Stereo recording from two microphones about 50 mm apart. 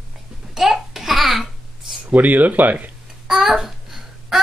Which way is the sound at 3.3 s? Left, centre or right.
Centre.